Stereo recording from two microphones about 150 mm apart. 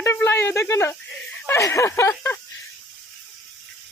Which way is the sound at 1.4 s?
15° left (ahead or behind).